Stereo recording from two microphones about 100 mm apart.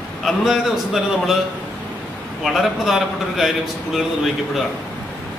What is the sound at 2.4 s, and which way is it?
A man's voice, centre (ahead or behind).